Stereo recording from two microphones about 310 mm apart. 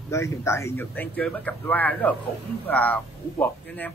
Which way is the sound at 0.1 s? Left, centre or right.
Centre.